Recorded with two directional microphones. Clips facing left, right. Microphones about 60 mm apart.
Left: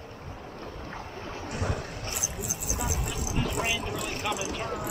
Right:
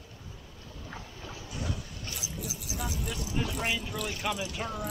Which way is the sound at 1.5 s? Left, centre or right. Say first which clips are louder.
Left 5 dB; left.